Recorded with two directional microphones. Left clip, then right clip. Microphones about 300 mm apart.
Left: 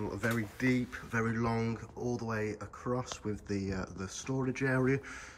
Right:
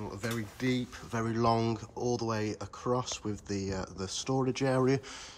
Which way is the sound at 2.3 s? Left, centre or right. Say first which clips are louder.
Right 1 dB; centre.